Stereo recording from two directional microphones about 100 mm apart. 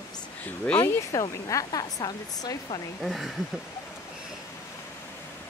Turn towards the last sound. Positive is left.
turn(degrees=0)  # may be behind; listen again after turning